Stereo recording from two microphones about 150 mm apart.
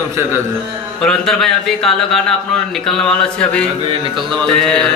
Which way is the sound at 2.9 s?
5° left (ahead or behind).